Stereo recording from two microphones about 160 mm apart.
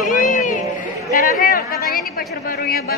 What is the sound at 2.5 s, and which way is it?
Speech, 70° left (ahead or behind).